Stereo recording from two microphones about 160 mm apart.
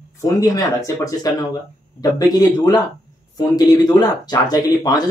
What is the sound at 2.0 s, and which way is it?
Speech, 25° left (ahead or behind).